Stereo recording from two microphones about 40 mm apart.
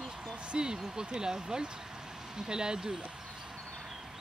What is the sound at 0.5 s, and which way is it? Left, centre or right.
Speech, right.